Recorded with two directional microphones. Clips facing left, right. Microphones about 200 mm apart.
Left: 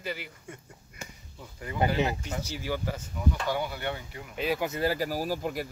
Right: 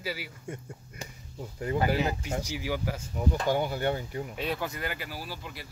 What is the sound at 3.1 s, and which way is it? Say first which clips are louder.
Speech: right 3 dB; 45° right (ahead or behind).